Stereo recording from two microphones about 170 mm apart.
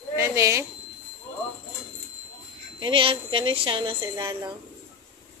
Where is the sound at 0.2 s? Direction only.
15° right (ahead or behind).